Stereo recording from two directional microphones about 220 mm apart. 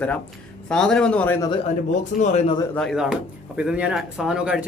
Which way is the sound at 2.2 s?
30° left (ahead or behind).